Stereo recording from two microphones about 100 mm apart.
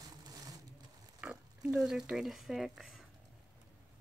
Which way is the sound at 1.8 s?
5° right (ahead or behind).